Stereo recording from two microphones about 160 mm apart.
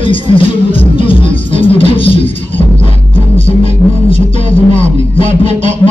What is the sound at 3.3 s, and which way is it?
Music, 35° left (ahead or behind).